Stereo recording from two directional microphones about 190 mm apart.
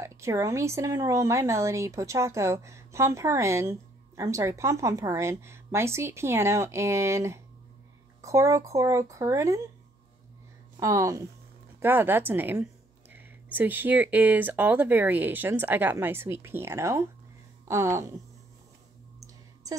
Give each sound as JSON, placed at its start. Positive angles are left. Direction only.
{"t": 0.0, "sound": "speech", "side_deg": -15}
{"t": 10.8, "sound": "speech", "side_deg": -15}
{"t": 19.1, "sound": "a sound", "side_deg": -20}